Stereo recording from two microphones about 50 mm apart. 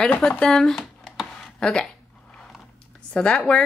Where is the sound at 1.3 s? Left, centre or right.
Centre.